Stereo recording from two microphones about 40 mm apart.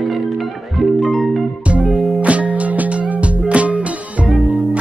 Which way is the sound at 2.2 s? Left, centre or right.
Right.